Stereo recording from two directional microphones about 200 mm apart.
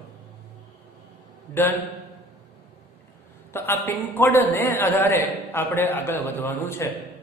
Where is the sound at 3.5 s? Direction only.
10° left (ahead or behind).